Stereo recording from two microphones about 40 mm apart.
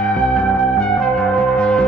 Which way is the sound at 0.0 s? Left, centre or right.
Left.